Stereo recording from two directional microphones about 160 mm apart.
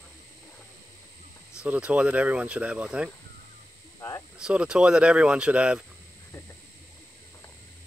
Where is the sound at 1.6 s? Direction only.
5° right (ahead or behind).